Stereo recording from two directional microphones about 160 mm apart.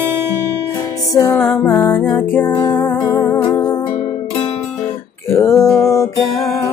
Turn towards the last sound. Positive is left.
turn(degrees=20)  # may be behind; listen again after turning